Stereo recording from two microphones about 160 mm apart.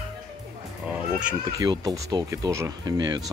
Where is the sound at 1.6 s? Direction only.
20° right (ahead or behind).